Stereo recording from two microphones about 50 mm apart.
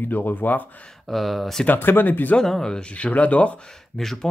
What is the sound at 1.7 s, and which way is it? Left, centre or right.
Speech, left.